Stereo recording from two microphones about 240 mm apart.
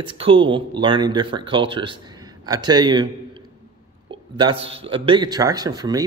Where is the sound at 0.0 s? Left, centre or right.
Right.